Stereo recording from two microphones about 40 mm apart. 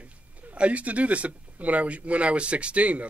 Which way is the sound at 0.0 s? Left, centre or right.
Right.